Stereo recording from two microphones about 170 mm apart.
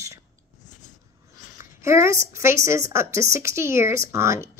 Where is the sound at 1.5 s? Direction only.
15° right (ahead or behind).